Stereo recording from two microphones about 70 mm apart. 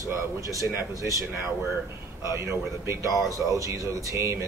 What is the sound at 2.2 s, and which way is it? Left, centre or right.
Speech, right.